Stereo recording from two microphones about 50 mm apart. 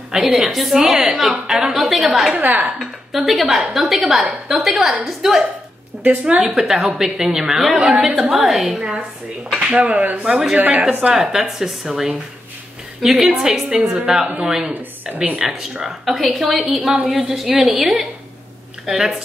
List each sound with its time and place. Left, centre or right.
0.1 s a woman's voice: centre
6.4 s a woman's voice: centre
9.6 s speech: right
11.1 s a woman's voice: centre
14.7 s a woman's voice: right
15.4 s a woman's voice: centre